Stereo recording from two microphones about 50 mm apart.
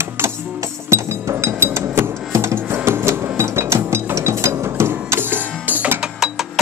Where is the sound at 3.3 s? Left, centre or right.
Right.